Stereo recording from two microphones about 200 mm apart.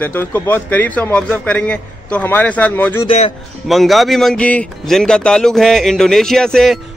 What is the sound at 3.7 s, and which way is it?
Speech, centre (ahead or behind).